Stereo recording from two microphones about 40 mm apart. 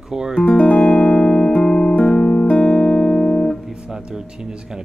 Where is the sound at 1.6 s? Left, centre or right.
Centre.